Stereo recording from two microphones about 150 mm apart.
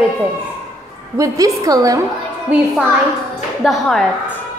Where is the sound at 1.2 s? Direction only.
20° right (ahead or behind).